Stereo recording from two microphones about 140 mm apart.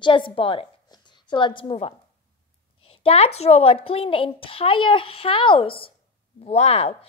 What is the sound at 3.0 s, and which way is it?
A woman's voice, 45° left (ahead or behind).